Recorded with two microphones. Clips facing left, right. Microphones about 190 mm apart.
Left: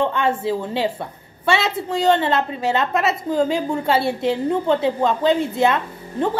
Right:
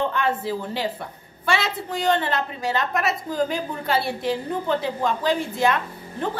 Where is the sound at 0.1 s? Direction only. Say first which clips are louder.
Left 4 dB; 25° left (ahead or behind).